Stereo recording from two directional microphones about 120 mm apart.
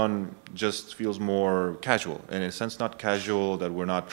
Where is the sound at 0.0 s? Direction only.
15° right (ahead or behind).